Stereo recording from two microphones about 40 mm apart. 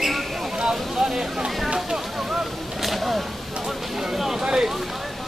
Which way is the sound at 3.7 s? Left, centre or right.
Centre.